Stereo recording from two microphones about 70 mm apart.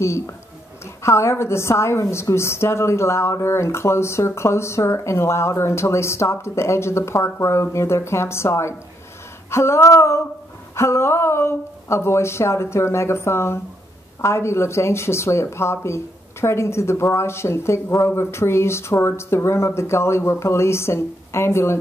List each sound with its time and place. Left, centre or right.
0.0 s a woman's voice: left